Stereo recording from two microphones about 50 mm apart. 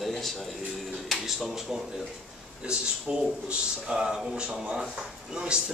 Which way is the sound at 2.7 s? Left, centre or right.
Centre.